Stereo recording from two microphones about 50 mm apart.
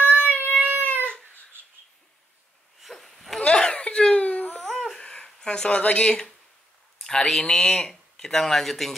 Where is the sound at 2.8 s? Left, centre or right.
Centre.